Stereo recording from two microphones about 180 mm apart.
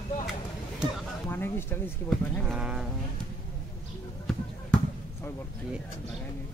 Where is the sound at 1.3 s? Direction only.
10° left (ahead or behind).